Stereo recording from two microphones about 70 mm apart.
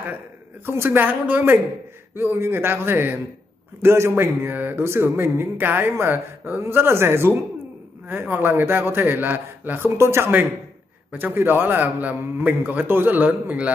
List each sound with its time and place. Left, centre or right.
0.7 s a man's voice: right